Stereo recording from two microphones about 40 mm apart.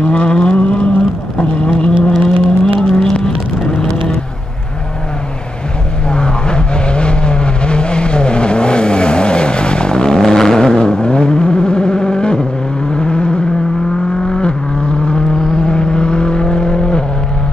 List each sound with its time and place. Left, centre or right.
0.0 s vehicle: left
6.0 s vehicle: left